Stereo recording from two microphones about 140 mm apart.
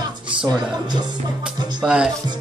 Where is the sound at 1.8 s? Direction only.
5° right (ahead or behind).